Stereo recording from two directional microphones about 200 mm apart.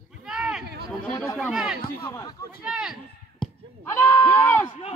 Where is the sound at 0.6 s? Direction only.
55° right (ahead or behind).